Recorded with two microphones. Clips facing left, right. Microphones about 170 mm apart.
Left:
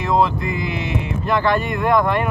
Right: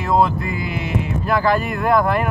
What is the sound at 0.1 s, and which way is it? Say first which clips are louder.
Speech: right 1 dB; centre (ahead or behind).